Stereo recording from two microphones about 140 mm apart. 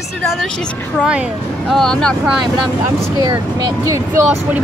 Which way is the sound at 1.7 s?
5° left (ahead or behind).